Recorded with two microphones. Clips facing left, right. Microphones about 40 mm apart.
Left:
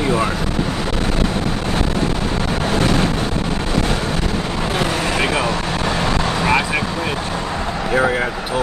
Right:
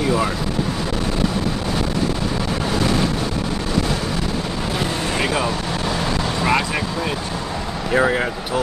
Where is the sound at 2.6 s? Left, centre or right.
Left.